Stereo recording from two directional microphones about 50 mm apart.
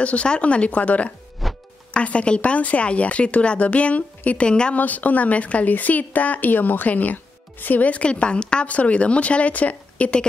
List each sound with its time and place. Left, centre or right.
0.0 s speech: left
1.4 s music: centre
2.0 s speech: left
4.7 s speech: left